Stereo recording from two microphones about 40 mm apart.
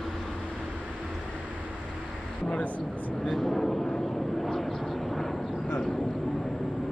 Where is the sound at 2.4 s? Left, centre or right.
Left.